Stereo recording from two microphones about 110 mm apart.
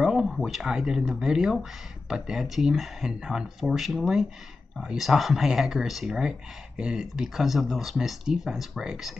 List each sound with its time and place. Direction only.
0.0 s speech: 5° right (ahead or behind)